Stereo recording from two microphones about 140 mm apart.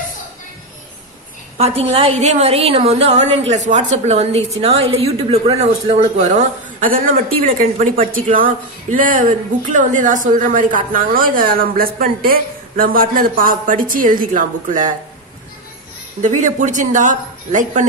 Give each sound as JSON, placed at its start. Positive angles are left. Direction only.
{"t": 1.8, "sound": "a woman's voice", "side_deg": -45}
{"t": 16.2, "sound": "speech", "side_deg": -60}